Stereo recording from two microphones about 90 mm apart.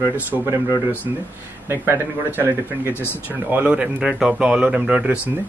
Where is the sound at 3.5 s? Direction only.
15° right (ahead or behind).